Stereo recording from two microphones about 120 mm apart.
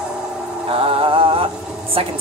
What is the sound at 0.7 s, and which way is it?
Music, 50° right (ahead or behind).